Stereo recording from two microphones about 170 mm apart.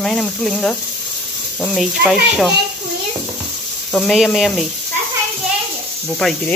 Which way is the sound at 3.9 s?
Centre (ahead or behind).